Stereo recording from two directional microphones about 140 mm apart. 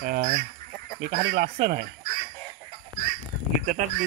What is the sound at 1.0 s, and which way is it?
Speech, 90° right.